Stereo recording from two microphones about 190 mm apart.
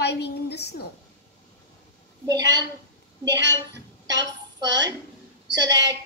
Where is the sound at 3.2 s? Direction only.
65° right (ahead or behind).